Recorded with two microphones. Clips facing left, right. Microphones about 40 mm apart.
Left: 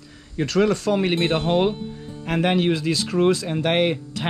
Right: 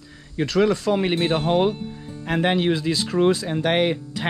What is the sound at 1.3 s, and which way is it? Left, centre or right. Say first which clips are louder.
Speech: even; centre.